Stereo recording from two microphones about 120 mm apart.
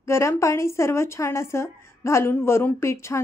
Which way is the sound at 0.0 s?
25° left (ahead or behind).